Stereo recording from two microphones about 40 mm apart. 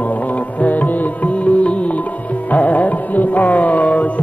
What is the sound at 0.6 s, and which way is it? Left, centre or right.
Music, left.